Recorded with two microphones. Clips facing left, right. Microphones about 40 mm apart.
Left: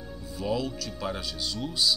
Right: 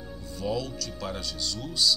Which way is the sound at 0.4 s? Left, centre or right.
Centre.